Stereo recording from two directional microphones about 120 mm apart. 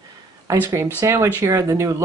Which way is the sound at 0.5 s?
25° right (ahead or behind).